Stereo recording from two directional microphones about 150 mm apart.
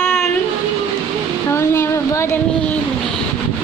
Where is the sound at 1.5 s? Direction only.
15° left (ahead or behind).